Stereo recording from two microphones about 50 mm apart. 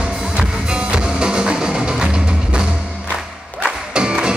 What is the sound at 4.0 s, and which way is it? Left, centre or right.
Music, centre.